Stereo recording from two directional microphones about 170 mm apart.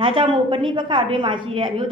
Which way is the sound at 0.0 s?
30° right (ahead or behind).